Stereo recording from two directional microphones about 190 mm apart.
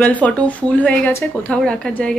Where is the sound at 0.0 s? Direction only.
10° left (ahead or behind).